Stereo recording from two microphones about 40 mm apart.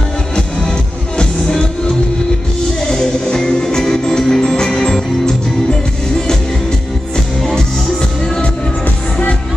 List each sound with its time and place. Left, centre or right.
2.9 s music: centre